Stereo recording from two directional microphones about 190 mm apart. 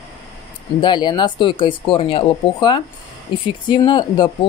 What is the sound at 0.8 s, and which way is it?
Speech, 25° left (ahead or behind).